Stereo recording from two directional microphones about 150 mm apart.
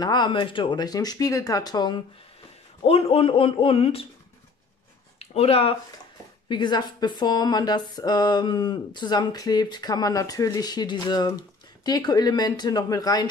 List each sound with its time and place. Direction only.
0.0 s speech: 30° left (ahead or behind)
2.8 s speech: 40° left (ahead or behind)
5.2 s speech: 40° left (ahead or behind)
6.5 s speech: 30° left (ahead or behind)